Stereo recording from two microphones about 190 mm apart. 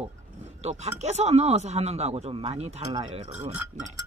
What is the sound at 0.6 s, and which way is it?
Speech, 35° right (ahead or behind).